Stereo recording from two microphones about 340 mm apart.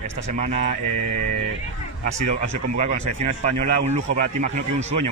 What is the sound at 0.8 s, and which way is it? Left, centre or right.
Mantra, right.